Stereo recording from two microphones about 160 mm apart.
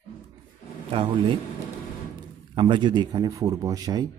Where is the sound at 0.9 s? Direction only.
35° right (ahead or behind).